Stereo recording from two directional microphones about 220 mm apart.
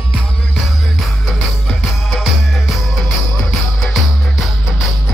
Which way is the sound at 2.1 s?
Centre (ahead or behind).